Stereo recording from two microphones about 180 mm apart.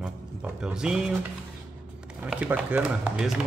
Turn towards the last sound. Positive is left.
turn(degrees=-5)  # may be behind; listen again after turning